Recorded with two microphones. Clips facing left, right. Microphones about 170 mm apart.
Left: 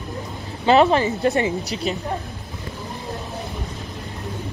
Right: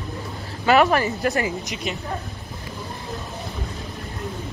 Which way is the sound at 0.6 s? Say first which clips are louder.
Left 2 dB; 25° left (ahead or behind).